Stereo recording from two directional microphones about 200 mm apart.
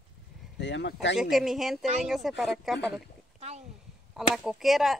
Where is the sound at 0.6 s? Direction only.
60° left (ahead or behind).